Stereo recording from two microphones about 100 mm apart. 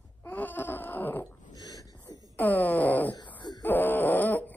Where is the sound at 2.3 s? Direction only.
15° left (ahead or behind).